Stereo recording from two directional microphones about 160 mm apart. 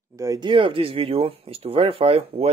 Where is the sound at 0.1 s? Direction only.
20° right (ahead or behind).